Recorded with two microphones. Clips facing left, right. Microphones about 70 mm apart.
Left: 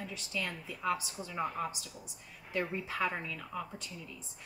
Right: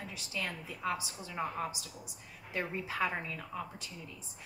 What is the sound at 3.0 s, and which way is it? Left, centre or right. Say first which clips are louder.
Speech: even; right.